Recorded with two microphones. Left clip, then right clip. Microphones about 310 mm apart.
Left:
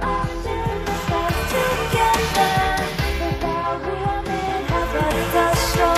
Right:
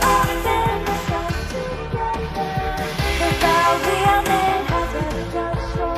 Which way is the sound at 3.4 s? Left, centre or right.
Right.